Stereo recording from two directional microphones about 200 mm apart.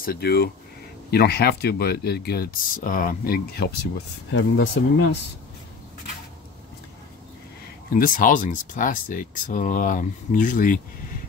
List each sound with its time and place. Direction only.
0.0 s speech: 50° left (ahead or behind)
4.3 s speech: 70° left (ahead or behind)
7.9 s speech: 45° left (ahead or behind)